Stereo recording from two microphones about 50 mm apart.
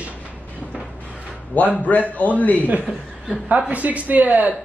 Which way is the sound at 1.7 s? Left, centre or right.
Left.